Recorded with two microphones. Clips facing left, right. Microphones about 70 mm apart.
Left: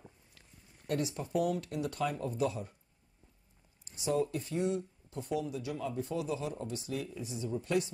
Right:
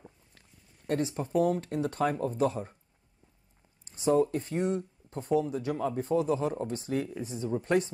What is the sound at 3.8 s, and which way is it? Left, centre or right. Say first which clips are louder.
Speech: right 7 dB; right.